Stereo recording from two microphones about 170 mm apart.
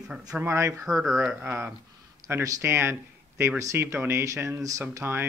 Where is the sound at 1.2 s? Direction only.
10° right (ahead or behind).